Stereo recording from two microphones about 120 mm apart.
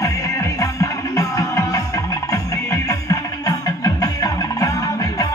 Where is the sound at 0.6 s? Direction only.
30° left (ahead or behind).